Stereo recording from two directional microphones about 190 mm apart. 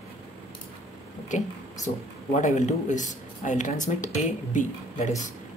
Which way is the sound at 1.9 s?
30° left (ahead or behind).